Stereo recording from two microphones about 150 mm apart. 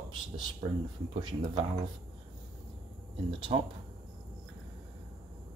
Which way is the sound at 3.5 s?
35° right (ahead or behind).